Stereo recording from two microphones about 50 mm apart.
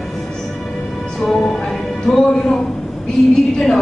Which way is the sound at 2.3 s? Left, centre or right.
Centre.